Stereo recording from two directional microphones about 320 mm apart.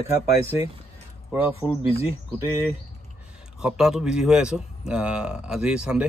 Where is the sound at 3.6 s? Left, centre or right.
Centre.